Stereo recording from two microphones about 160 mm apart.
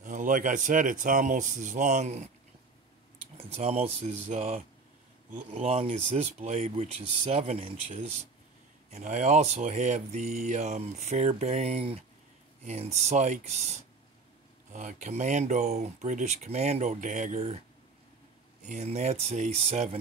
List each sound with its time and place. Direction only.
0.0 s speech: 55° right (ahead or behind)
3.3 s speech: 40° right (ahead or behind)
18.7 s speech: 45° right (ahead or behind)